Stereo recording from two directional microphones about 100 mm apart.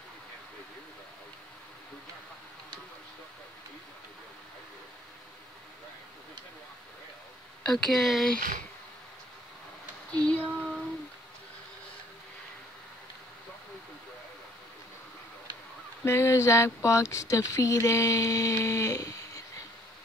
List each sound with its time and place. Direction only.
7.6 s speech: 5° left (ahead or behind)
10.1 s female singing: 15° left (ahead or behind)
16.0 s speech: 30° left (ahead or behind)